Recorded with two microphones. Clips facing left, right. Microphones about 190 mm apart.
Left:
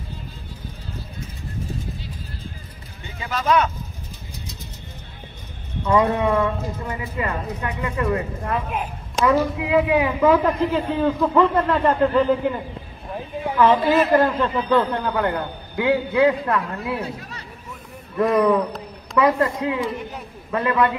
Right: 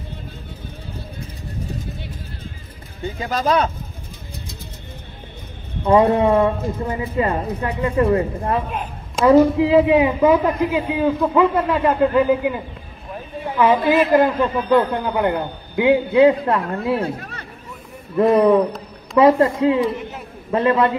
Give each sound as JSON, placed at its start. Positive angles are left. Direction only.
{"t": 3.2, "sound": "speech", "side_deg": -35}
{"t": 5.9, "sound": "speech", "side_deg": -30}
{"t": 8.6, "sound": "a sound", "side_deg": 5}
{"t": 9.2, "sound": "a man's voice", "side_deg": -25}
{"t": 17.0, "sound": "chatter", "side_deg": -55}
{"t": 18.1, "sound": "a man's voice", "side_deg": -25}
{"t": 20.0, "sound": "a sound", "side_deg": 0}
{"t": 20.5, "sound": "a man's voice", "side_deg": -30}